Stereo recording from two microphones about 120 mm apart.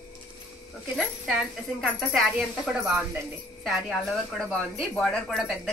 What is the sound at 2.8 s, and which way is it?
Speech, 20° right (ahead or behind).